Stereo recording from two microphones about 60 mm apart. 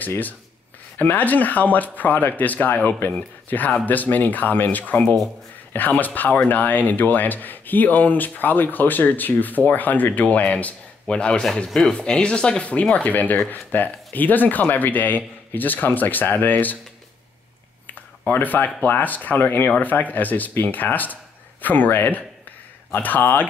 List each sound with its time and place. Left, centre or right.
0.9 s speech: left
18.2 s speech: left